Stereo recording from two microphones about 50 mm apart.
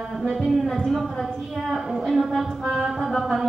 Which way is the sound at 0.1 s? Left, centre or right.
Centre.